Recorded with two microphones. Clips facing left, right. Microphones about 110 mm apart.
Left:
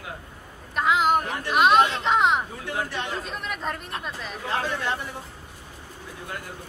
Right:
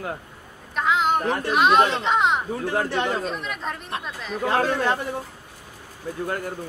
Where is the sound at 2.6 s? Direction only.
40° right (ahead or behind).